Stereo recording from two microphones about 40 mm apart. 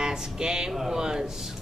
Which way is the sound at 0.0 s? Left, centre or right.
Centre.